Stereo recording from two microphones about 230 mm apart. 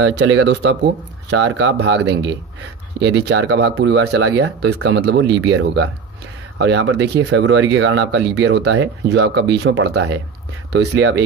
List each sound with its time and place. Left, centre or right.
0.0 s speech: right